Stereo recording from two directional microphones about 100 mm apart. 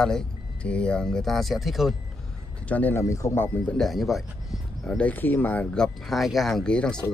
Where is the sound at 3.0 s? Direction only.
30° left (ahead or behind).